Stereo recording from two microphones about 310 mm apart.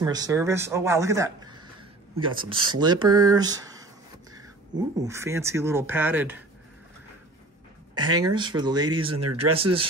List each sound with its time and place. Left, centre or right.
0.0 s speech: centre
7.9 s speech: centre
9.1 s speech: right
9.5 s speech: centre